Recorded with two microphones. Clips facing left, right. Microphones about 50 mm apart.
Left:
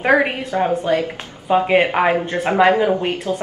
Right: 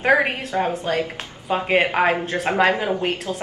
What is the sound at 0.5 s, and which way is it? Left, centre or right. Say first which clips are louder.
Speech: left 4 dB; centre.